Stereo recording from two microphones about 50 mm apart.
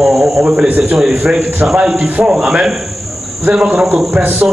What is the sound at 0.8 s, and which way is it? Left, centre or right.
A man's voice, centre.